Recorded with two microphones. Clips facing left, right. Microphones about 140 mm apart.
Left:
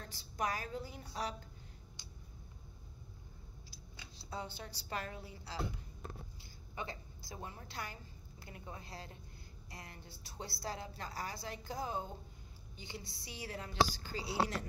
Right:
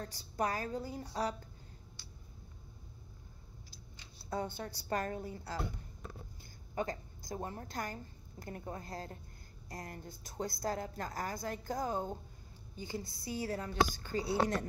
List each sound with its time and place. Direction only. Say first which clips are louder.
0.0 s a woman's voice: right 3 dB; 40° right (ahead or behind)
2.0 s a sound: even; 15° left (ahead or behind)
4.3 s a woman's voice: right 6 dB; 50° right (ahead or behind)
6.7 s a woman's voice: right 7 dB; 45° right (ahead or behind)